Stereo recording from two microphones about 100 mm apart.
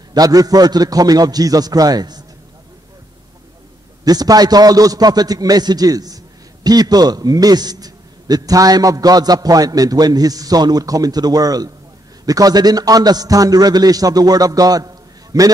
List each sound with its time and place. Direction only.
0.1 s a man's voice: 40° right (ahead or behind)
4.0 s a man's voice: 40° right (ahead or behind)